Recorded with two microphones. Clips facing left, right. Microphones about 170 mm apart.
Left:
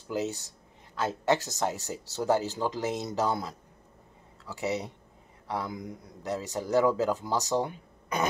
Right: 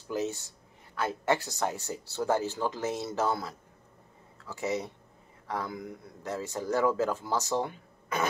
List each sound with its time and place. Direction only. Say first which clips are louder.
0.1 s a man's voice: even; 15° left (ahead or behind)